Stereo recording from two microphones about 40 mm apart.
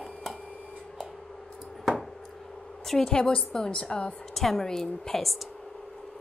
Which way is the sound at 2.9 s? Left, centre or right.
Centre.